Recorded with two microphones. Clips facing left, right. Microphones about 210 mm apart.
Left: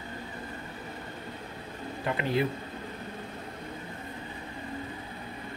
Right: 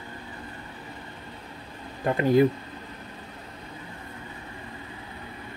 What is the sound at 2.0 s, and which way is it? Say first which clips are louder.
Speech: right 9 dB; 45° right (ahead or behind).